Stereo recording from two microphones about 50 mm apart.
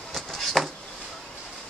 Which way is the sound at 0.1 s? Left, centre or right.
Centre.